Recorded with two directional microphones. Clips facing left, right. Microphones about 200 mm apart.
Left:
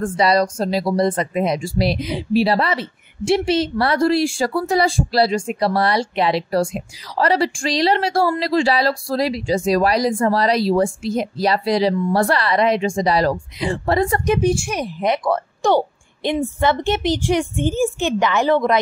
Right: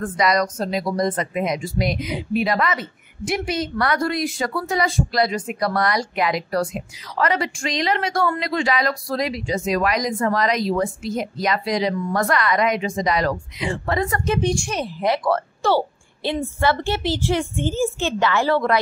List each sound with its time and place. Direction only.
0.0 s speech: 30° left (ahead or behind)
14.2 s a woman's voice: 15° left (ahead or behind)